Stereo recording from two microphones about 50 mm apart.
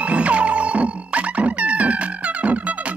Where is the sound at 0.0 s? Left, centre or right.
Right.